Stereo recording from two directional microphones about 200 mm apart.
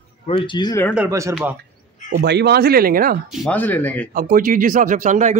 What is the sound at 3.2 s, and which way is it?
Speech, 5° left (ahead or behind).